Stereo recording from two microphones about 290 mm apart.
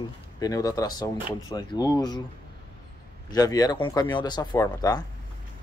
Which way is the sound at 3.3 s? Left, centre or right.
Centre.